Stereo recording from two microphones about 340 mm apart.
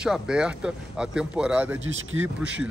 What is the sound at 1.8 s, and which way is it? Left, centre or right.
Speech, right.